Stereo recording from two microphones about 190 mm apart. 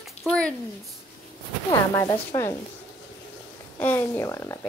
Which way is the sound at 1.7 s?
15° left (ahead or behind).